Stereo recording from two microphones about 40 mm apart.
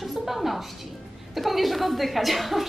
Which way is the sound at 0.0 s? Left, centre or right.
Centre.